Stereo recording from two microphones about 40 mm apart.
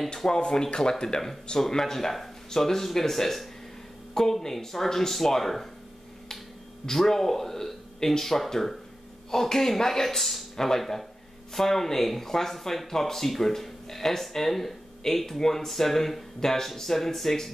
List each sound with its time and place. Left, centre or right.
0.1 s speech: centre
6.9 s speech: centre